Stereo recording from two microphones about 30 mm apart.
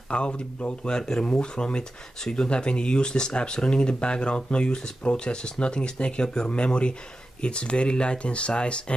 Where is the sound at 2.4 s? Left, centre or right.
Left.